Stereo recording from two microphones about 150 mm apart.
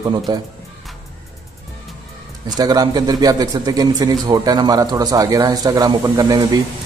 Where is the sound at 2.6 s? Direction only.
25° right (ahead or behind).